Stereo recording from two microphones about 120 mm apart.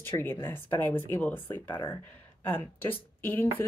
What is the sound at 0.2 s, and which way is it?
A woman's voice, 20° left (ahead or behind).